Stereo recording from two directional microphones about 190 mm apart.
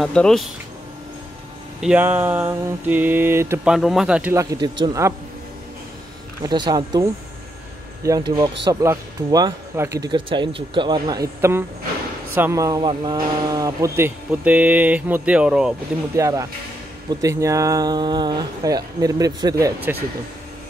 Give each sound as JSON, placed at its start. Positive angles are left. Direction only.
{"t": 0.0, "sound": "speech", "side_deg": 5}
{"t": 1.8, "sound": "speech", "side_deg": -5}
{"t": 6.4, "sound": "speech", "side_deg": -20}
{"t": 16.2, "sound": "speech", "side_deg": -15}